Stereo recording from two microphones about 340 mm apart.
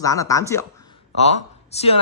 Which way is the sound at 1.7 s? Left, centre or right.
Centre.